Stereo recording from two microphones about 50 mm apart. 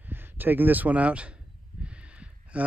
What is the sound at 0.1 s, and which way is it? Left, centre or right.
Speech, right.